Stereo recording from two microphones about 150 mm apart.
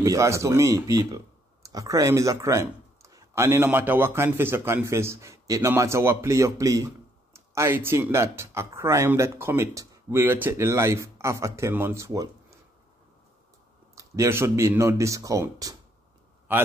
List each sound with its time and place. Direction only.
0.0 s speech: 20° right (ahead or behind)
13.9 s speech: 20° right (ahead or behind)